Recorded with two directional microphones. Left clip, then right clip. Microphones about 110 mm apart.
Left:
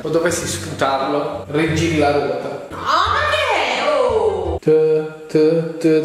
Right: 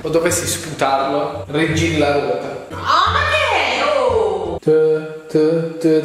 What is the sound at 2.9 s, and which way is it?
Music, 15° left (ahead or behind).